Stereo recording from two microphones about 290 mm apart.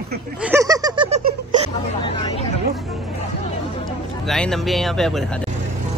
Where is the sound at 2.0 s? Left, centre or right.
Centre.